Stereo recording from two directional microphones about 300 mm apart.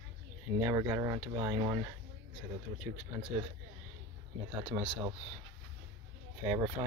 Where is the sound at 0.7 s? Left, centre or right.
Centre.